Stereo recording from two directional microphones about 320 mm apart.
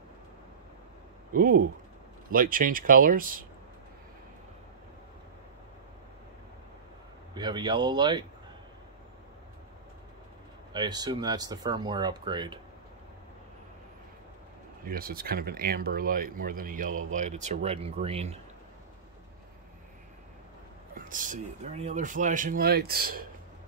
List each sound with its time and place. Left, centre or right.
1.3 s speech: right
7.3 s speech: centre
10.7 s speech: centre
14.9 s speech: right
20.9 s speech: right